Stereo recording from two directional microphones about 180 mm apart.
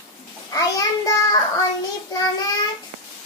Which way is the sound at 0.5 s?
20° left (ahead or behind).